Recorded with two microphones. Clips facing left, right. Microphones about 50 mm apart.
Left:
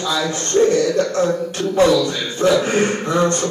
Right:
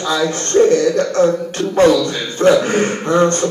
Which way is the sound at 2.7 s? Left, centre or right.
Right.